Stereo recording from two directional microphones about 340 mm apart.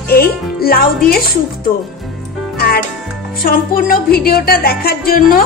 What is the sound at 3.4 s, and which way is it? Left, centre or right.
A woman's voice, left.